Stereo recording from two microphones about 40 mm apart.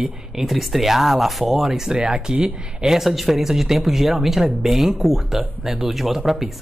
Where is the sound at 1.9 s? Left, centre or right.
Right.